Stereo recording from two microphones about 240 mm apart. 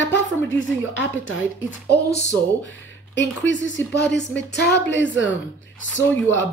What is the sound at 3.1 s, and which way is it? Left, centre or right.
Speech, left.